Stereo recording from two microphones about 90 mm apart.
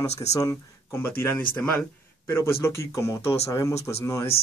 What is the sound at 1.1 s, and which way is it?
Speech, 25° left (ahead or behind).